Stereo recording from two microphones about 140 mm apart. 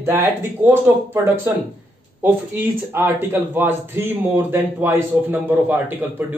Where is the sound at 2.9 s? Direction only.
15° right (ahead or behind).